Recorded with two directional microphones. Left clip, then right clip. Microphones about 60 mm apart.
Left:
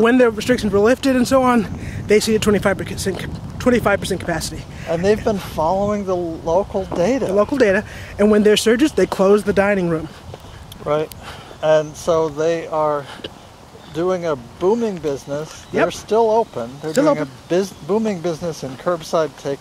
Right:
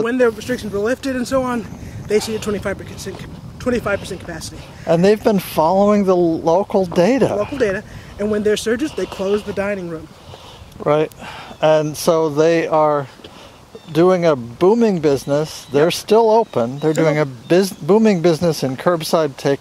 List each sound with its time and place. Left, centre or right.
0.0 s speech: left
4.8 s speech: right
7.3 s speech: left
10.8 s speech: centre
11.6 s speech: right